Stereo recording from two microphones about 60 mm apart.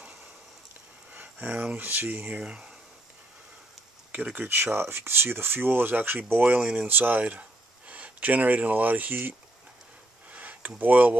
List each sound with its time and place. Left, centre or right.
1.1 s speech: right
2.4 s speech: centre
4.1 s speech: right
4.5 s speech: right
10.3 s a sound: right
10.8 s speech: right